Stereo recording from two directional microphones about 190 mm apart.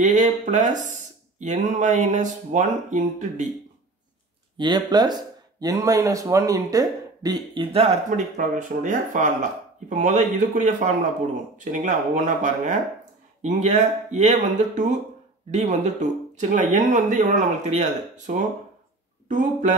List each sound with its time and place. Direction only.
0.0 s speech: 40° right (ahead or behind)
4.6 s speech: 20° right (ahead or behind)
7.7 s speech: 35° right (ahead or behind)